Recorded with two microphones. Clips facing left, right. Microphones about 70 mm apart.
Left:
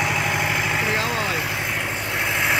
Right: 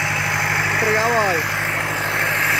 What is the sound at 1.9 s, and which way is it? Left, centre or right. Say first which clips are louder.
Vehicle: right 5 dB; right.